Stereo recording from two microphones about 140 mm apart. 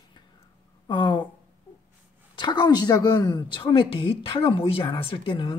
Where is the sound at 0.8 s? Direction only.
35° left (ahead or behind).